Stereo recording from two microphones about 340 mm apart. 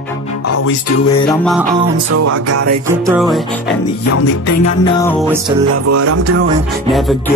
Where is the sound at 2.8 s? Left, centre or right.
Centre.